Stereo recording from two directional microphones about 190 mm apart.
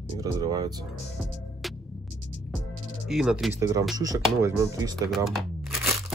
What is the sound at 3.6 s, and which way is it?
Speech, 20° right (ahead or behind).